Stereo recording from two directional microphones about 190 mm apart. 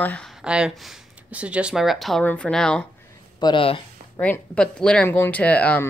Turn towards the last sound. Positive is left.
turn(degrees=5)  # may be behind; listen again after turning